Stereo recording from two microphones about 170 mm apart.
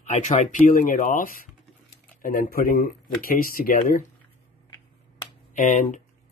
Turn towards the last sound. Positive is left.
turn(degrees=50)  # may be behind; listen again after turning